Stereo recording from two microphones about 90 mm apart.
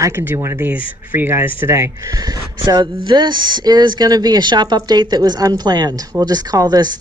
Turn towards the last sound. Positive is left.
turn(degrees=-45)  # may be behind; listen again after turning